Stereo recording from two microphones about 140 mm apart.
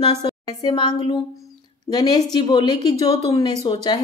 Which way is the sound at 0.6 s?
30° left (ahead or behind).